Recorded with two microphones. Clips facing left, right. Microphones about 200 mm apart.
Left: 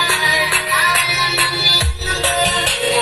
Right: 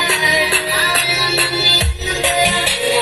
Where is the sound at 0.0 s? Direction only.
20° right (ahead or behind).